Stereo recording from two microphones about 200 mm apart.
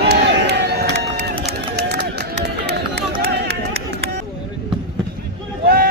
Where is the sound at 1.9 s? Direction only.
55° right (ahead or behind).